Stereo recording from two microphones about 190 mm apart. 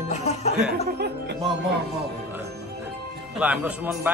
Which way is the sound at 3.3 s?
5° right (ahead or behind).